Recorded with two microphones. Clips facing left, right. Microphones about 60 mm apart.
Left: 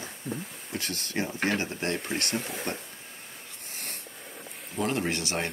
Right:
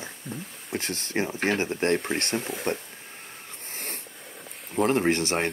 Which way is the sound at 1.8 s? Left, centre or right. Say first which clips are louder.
Right 6 dB; right.